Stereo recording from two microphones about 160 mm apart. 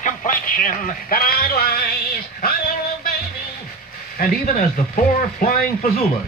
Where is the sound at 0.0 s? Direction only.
55° left (ahead or behind); by 1.9 s 75° left (ahead or behind).